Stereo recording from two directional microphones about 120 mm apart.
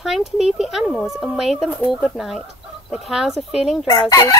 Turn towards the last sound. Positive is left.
turn(degrees=30)  # may be behind; listen again after turning